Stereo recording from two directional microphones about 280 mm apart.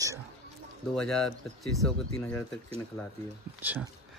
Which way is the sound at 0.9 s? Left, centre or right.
Centre.